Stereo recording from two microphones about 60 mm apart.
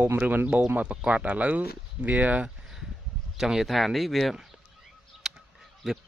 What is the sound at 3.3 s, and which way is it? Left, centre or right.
Speech, centre.